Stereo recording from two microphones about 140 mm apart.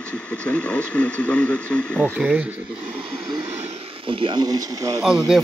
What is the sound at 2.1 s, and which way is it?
Speech, 10° right (ahead or behind).